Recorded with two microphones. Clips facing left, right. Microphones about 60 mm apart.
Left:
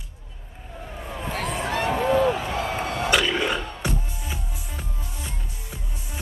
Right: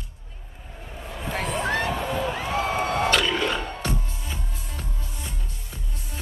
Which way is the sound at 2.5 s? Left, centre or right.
Right.